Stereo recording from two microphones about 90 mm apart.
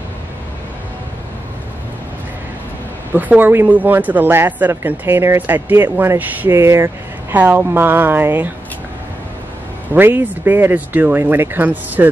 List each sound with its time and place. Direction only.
3.1 s speech: 20° right (ahead or behind)
9.9 s speech: 20° right (ahead or behind)